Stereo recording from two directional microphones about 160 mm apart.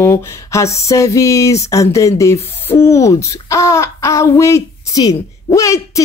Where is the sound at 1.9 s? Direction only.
20° left (ahead or behind).